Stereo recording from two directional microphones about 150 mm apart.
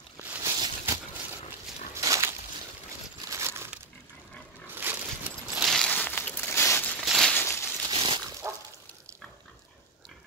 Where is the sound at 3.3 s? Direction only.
15° right (ahead or behind).